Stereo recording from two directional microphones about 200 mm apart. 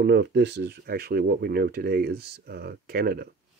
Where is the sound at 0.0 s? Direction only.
55° right (ahead or behind).